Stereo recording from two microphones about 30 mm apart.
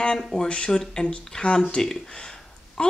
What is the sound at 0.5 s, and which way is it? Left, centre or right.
Speech, left.